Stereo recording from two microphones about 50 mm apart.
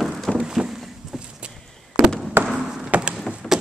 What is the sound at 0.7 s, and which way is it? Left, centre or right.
Vehicle, centre.